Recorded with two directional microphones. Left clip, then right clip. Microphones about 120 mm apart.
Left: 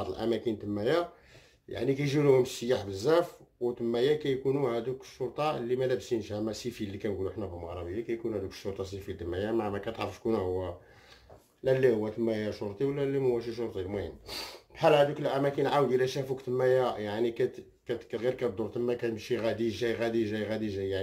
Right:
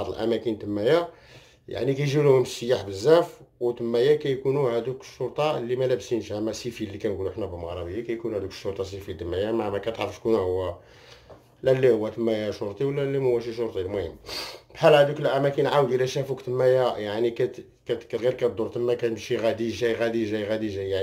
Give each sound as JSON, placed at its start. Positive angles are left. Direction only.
{"t": 0.0, "sound": "speech", "side_deg": -15}
{"t": 11.6, "sound": "speech", "side_deg": -15}